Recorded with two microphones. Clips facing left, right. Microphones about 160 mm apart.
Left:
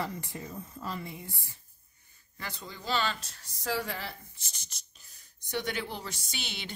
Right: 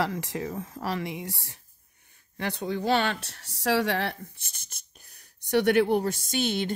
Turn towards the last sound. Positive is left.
turn(degrees=-50)  # may be behind; listen again after turning